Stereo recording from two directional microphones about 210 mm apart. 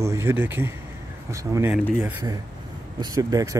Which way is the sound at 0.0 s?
15° right (ahead or behind).